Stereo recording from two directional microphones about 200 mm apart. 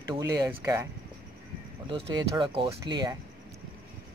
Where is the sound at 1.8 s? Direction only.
25° right (ahead or behind).